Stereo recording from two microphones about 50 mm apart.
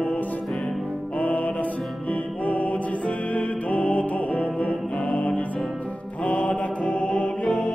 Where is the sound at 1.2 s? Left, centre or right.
Left.